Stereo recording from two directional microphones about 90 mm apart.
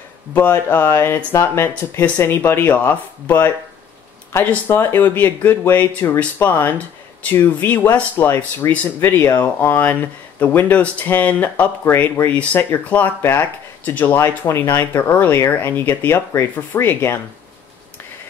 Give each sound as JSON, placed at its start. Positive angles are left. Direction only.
{"t": 0.3, "sound": "speech", "side_deg": 20}